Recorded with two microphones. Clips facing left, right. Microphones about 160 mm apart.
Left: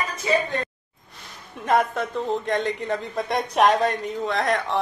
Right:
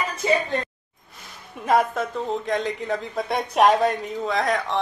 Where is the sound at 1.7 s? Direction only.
Centre (ahead or behind).